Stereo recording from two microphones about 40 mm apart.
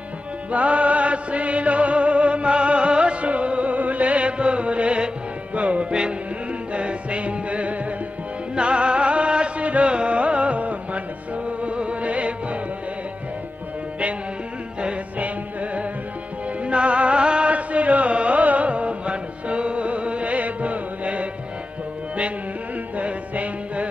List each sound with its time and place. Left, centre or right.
0.5 s music: right
14.8 s music: right
22.9 s music: right